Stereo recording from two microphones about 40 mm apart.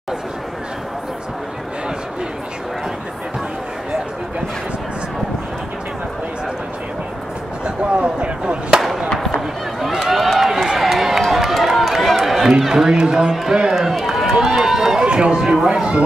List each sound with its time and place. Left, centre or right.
7.6 s a sound: right
10.0 s run: centre
12.4 s a sound: centre
12.9 s a man's voice: centre
13.7 s run: centre
15.0 s speech: right